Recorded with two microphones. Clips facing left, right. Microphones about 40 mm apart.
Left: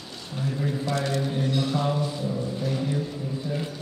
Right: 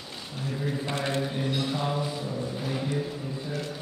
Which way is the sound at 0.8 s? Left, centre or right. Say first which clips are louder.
Left 3 dB; right.